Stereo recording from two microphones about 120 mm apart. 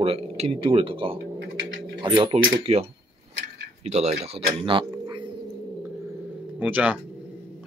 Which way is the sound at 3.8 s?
65° right (ahead or behind).